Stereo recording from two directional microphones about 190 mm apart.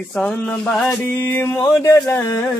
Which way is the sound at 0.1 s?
5° left (ahead or behind).